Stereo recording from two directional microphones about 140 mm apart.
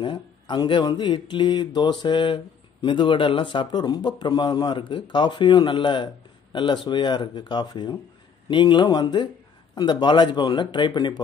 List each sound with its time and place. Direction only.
0.0 s speech: 35° left (ahead or behind)